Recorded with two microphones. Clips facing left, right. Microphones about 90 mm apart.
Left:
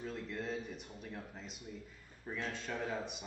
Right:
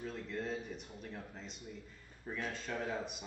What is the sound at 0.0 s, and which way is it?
A man's voice, centre (ahead or behind).